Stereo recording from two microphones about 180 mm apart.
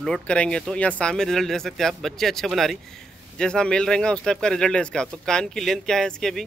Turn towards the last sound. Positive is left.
turn(degrees=0)  # may be behind; listen again after turning